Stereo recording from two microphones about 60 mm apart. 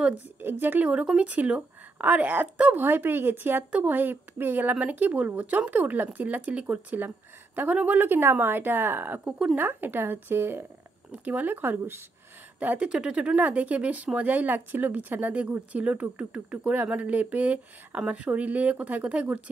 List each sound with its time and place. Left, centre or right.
0.4 s a woman's voice: right
2.8 s a woman's voice: right
8.2 s a woman's voice: right
11.2 s a woman's voice: right
12.5 s speech: right